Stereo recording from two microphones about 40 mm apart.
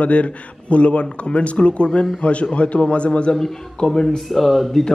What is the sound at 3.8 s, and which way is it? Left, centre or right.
Speech, centre.